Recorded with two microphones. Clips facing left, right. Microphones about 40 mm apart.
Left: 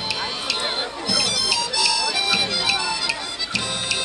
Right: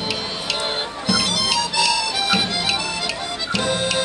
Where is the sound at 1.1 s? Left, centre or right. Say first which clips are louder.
Right 4 dB; right.